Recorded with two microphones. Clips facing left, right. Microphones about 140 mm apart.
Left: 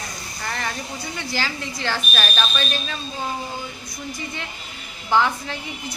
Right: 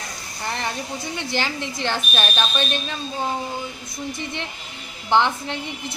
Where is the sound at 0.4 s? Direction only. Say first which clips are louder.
Right 2 dB; 20° right (ahead or behind).